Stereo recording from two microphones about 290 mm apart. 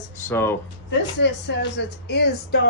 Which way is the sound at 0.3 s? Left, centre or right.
Centre.